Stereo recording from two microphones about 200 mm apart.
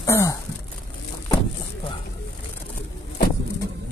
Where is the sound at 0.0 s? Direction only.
15° left (ahead or behind).